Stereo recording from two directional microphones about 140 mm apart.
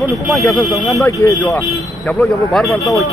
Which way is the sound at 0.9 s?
25° left (ahead or behind).